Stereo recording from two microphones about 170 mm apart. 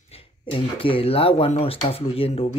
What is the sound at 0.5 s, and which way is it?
Speech, 30° left (ahead or behind).